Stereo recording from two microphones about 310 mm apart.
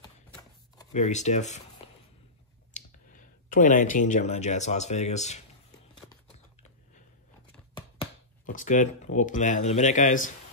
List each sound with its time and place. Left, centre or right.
0.0 s chopping: centre
0.9 s speech: left
2.7 s speech: left
8.5 s speech: left